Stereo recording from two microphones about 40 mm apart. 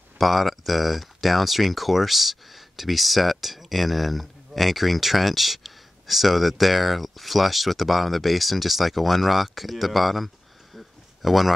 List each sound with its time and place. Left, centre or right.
0.2 s speech: centre